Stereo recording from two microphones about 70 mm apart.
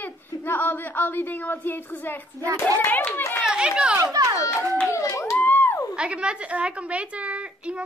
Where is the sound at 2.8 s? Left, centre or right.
Left.